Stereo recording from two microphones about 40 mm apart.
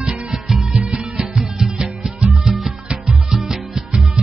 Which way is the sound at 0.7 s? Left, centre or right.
Centre.